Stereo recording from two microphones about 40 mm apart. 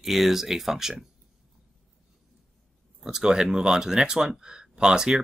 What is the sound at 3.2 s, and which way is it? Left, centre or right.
Speech, centre.